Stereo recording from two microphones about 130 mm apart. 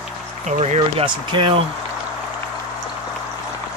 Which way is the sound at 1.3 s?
40° right (ahead or behind).